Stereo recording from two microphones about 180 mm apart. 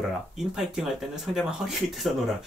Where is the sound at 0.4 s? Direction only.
5° right (ahead or behind).